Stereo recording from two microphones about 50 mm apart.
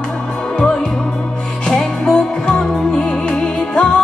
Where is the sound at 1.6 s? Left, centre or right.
Centre.